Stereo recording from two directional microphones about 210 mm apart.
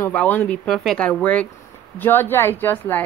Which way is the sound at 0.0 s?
5° left (ahead or behind).